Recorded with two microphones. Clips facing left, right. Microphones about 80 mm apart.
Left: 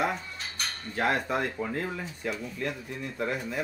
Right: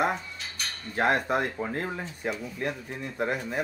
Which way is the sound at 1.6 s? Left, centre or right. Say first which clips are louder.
Right 1 dB; right.